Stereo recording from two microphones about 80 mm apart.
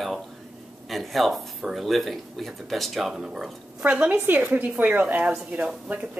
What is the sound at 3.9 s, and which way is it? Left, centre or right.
Speech, right.